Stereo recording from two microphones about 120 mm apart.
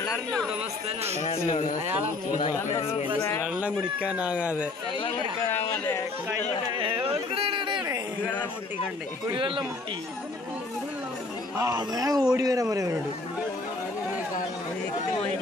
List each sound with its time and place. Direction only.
0.8 s speech: 60° right (ahead or behind)
1.2 s speech: 60° left (ahead or behind)
2.8 s speech: 55° left (ahead or behind)
3.2 s speech: 20° left (ahead or behind)
3.4 s speech: 10° right (ahead or behind)
6.8 s a sound: 45° right (ahead or behind)
9.3 s speech: 45° right (ahead or behind)
11.5 s a man's voice: 30° right (ahead or behind)